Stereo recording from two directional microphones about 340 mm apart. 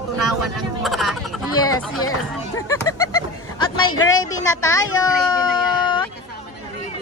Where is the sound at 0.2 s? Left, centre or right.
Centre.